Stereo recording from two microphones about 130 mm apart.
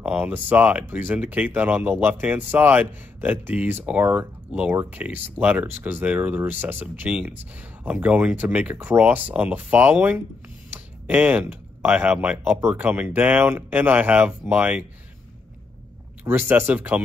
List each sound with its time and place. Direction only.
0.0 s speech: 15° right (ahead or behind)
16.3 s speech: 15° right (ahead or behind)